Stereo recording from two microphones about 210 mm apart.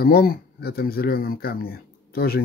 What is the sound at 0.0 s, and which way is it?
Speech, 45° left (ahead or behind).